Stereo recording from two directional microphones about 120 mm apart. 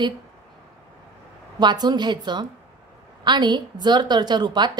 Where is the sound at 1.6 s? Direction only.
40° right (ahead or behind).